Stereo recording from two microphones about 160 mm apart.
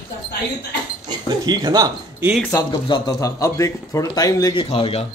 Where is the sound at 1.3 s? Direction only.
25° right (ahead or behind).